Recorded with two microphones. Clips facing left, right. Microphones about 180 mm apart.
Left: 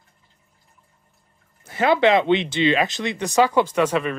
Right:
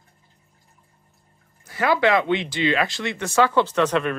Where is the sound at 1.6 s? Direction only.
25° left (ahead or behind).